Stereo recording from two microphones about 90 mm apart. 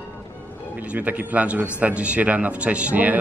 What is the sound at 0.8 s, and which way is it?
A man's voice, 15° right (ahead or behind).